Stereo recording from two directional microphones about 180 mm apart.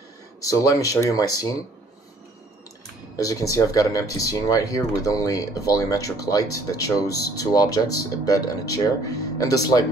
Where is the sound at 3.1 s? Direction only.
20° left (ahead or behind).